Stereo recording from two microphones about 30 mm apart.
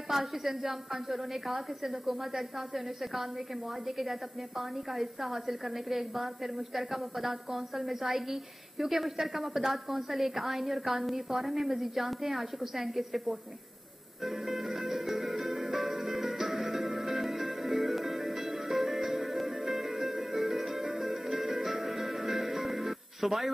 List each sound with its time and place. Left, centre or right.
0.1 s a woman's voice: centre
14.4 s music: centre